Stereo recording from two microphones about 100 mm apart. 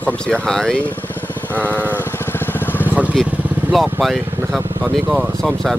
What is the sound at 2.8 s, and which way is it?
Vehicle, 15° right (ahead or behind).